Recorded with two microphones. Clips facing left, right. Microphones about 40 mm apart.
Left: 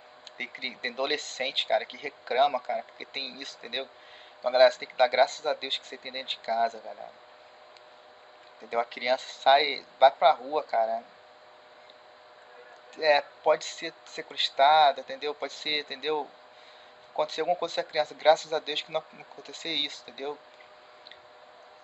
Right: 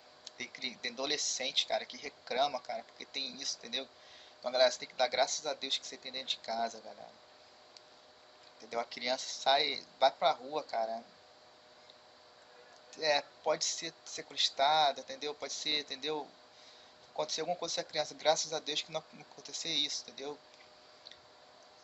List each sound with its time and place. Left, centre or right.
0.4 s speech: left
8.5 s speech: left
12.9 s speech: left